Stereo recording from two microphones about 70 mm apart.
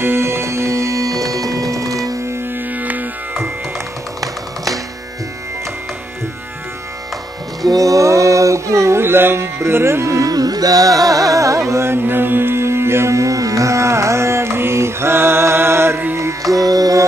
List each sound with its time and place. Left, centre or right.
0.0 s music: right
2.7 s music: right
7.6 s a sound: right
10.3 s music: right
16.2 s music: right